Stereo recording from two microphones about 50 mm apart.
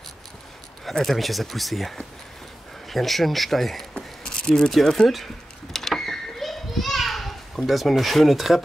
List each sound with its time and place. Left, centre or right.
0.8 s speech: centre
3.9 s a sound: centre
4.8 s speech: centre
5.1 s children playing: centre
7.6 s speech: centre